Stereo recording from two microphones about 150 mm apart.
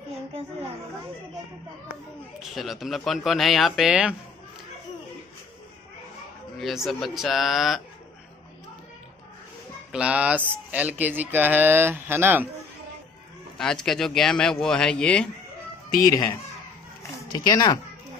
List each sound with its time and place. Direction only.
2.5 s speech: centre (ahead or behind)
6.6 s speech: centre (ahead or behind)
9.9 s speech: 10° right (ahead or behind)
13.6 s speech: 5° left (ahead or behind)
17.3 s speech: 30° left (ahead or behind)